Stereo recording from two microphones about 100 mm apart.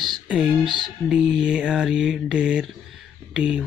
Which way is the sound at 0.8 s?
5° right (ahead or behind).